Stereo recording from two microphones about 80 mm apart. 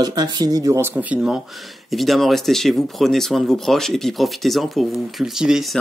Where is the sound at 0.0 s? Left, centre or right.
Right.